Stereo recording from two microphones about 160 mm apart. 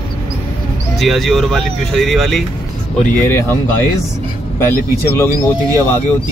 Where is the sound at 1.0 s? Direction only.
Centre (ahead or behind).